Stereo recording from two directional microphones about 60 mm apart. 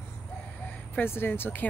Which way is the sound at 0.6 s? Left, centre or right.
Left.